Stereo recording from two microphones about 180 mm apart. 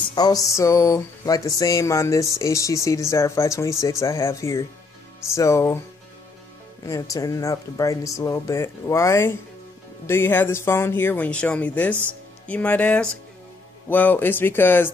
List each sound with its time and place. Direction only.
0.1 s speech: 20° left (ahead or behind)
6.9 s speech: 20° left (ahead or behind)